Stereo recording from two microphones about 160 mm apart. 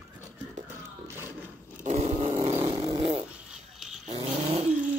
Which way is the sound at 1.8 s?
50° right (ahead or behind).